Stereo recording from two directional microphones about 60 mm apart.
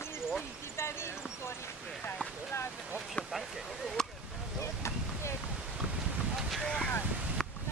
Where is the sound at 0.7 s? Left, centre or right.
Left.